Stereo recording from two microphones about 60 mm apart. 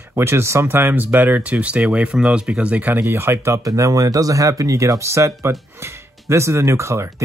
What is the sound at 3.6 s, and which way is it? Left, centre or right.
Speech, right.